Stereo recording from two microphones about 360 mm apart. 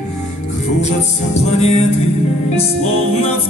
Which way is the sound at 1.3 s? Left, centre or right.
Centre.